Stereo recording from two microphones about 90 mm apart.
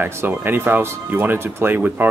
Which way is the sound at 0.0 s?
20° right (ahead or behind).